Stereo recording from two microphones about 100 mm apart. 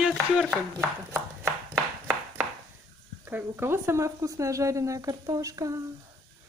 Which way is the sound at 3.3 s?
20° right (ahead or behind).